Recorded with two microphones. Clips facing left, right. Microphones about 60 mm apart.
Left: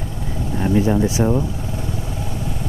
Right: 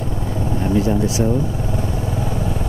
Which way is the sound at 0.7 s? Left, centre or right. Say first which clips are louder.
Left 1 dB; left.